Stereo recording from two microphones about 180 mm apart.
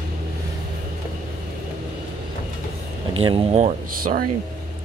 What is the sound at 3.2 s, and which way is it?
Speech, 30° right (ahead or behind).